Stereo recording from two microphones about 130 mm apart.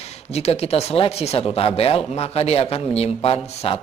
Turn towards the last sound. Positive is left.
turn(degrees=50)  # may be behind; listen again after turning